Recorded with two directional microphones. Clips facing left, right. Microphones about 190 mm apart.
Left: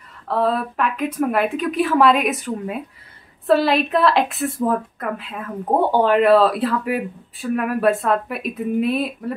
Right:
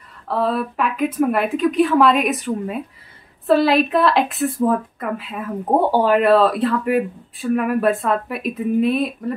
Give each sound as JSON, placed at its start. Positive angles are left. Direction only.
{"t": 0.3, "sound": "speech", "side_deg": 0}